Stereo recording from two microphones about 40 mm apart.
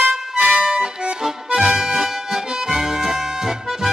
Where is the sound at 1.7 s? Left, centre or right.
Centre.